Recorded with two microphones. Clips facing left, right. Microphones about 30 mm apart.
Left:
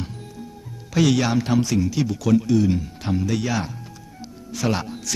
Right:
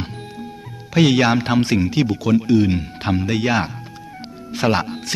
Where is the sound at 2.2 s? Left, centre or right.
Right.